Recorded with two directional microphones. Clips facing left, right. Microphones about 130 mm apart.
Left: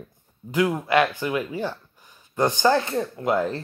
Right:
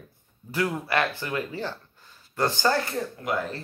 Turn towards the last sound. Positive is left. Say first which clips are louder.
# left 6 dB
turn(degrees=25)  # may be behind; listen again after turning